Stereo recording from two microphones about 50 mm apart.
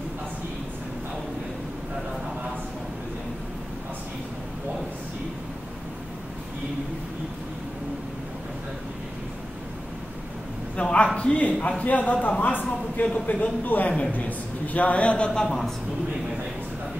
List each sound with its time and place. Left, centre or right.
10.8 s a sound: left
11.1 s speech: left
15.4 s a woman's voice: centre